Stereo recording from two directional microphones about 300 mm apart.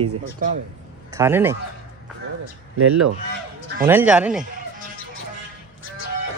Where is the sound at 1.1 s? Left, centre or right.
Centre.